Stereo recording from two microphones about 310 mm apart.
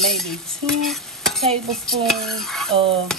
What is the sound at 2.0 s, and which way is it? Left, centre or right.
Dishes, centre.